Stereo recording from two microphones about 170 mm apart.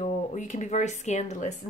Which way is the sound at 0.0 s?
45° left (ahead or behind).